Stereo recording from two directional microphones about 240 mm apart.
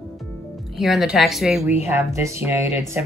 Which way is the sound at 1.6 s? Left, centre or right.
Left.